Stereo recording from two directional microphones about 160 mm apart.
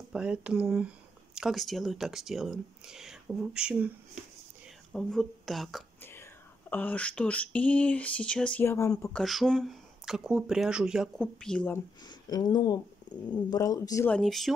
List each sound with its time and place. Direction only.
0.1 s speech: 5° right (ahead or behind)
4.9 s speech: centre (ahead or behind); by 9.1 s 20° left (ahead or behind)
9.1 s speech: centre (ahead or behind)
12.0 s speech: 25° left (ahead or behind)
14.0 s speech: 5° left (ahead or behind)